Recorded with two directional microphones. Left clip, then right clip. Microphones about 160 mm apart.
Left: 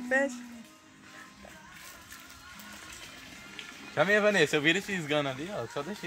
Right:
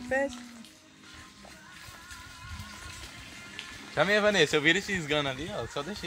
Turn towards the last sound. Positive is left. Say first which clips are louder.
# right 1 dB
turn(degrees=15)  # may be behind; listen again after turning